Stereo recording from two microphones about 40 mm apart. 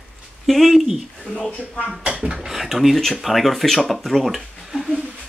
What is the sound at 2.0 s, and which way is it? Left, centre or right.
Speech, right.